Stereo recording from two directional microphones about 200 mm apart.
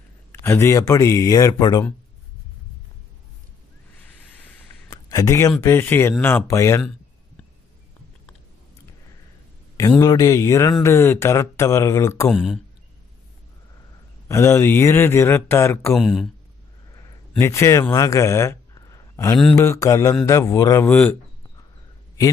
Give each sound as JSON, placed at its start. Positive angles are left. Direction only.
{"t": 0.3, "sound": "speech", "side_deg": 10}
{"t": 4.3, "sound": "a sound", "side_deg": 10}
{"t": 5.6, "sound": "speech", "side_deg": 10}
{"t": 9.8, "sound": "speech", "side_deg": 15}
{"t": 12.3, "sound": "speech", "side_deg": 0}
{"t": 14.2, "sound": "speech", "side_deg": 15}
{"t": 16.0, "sound": "speech", "side_deg": 0}
{"t": 17.4, "sound": "a man's voice", "side_deg": 15}